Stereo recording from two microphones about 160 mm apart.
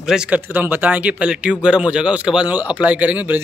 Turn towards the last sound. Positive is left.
turn(degrees=-10)  # may be behind; listen again after turning